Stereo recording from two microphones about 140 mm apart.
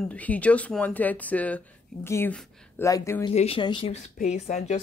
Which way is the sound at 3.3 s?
45° left (ahead or behind).